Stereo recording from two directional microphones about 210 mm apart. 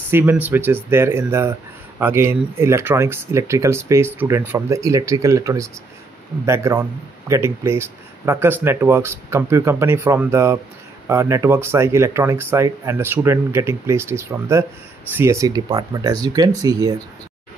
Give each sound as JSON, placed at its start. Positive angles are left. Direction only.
{"t": 0.1, "sound": "speech", "side_deg": -10}